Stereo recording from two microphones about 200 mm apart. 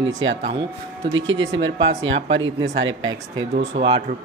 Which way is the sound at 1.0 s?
70° right (ahead or behind).